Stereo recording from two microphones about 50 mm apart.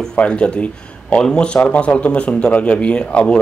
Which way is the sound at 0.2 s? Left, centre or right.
Left.